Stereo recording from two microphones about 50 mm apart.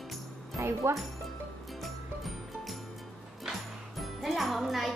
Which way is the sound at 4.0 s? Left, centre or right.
Centre.